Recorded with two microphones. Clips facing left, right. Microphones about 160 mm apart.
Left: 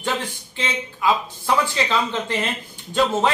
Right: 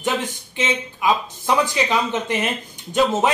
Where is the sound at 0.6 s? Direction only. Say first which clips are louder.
Right 3 dB; 20° right (ahead or behind).